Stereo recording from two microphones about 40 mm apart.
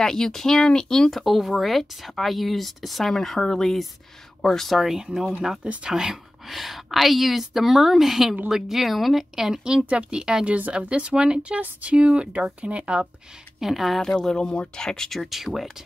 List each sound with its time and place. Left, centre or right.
0.0 s speech: centre
1.1 s speech: centre
4.7 s speech: centre
6.5 s speech: centre
9.8 s speech: right
13.6 s speech: centre
14.0 s speech: centre
15.3 s speech: centre